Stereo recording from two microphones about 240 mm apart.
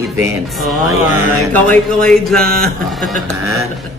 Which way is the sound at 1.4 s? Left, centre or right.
Centre.